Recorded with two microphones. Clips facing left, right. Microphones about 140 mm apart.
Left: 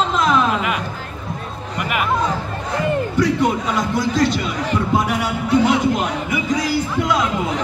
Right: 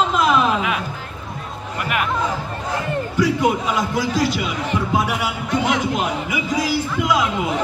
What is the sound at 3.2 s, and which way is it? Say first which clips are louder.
A man's voice: right 1 dB; 5° right (ahead or behind).